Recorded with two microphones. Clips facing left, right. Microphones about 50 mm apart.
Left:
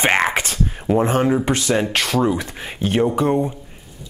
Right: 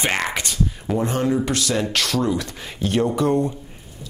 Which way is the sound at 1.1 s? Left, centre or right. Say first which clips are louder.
Left 3 dB; left.